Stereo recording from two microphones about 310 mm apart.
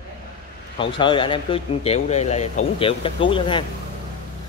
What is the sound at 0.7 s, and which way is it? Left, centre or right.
Speech, centre.